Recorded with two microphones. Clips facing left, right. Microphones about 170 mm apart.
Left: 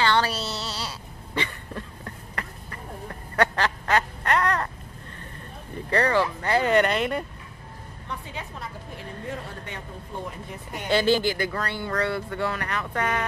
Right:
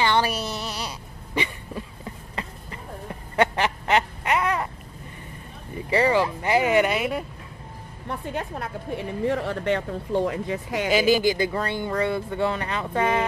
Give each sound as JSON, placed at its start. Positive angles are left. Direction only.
{"t": 0.0, "sound": "a sound", "side_deg": -15}
{"t": 5.8, "sound": "speech", "side_deg": -10}
{"t": 8.1, "sound": "a woman's voice", "side_deg": -50}
{"t": 10.9, "sound": "speech", "side_deg": -10}